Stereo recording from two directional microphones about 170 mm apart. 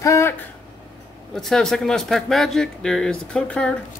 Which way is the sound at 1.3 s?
5° left (ahead or behind).